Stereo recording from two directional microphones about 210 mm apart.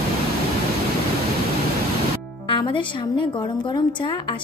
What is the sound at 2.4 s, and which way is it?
Speech, 25° left (ahead or behind).